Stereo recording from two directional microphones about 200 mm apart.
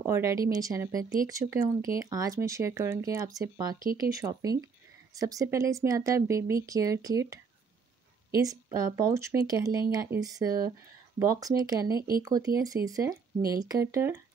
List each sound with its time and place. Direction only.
0.1 s a woman's voice: 15° right (ahead or behind)